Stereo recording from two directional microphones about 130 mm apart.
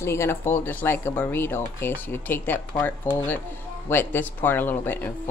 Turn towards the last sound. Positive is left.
turn(degrees=15)  # may be behind; listen again after turning